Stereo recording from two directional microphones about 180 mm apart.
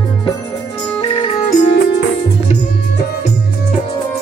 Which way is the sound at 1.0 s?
25° left (ahead or behind).